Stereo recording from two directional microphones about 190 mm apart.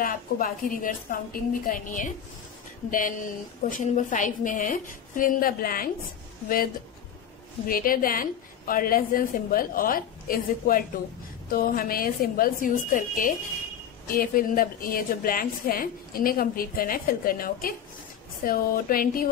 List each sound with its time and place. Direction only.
0.0 s a woman's voice: 45° left (ahead or behind)
7.6 s a woman's voice: 50° left (ahead or behind)